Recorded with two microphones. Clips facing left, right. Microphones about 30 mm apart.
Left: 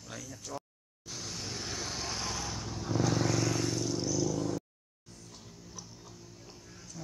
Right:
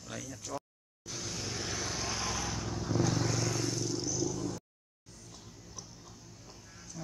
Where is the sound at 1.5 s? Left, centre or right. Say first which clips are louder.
Right 2 dB; right.